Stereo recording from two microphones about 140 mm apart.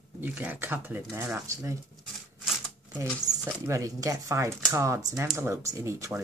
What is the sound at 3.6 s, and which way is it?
Speech, 20° right (ahead or behind).